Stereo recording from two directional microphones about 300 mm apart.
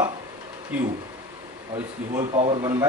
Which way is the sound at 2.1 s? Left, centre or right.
Right.